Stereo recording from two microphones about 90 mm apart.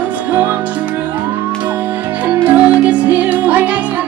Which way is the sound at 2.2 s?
15° right (ahead or behind).